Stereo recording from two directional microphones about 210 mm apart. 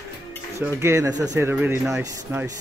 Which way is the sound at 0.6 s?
15° right (ahead or behind).